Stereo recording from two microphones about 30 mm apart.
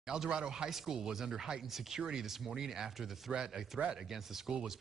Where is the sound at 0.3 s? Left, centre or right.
Right.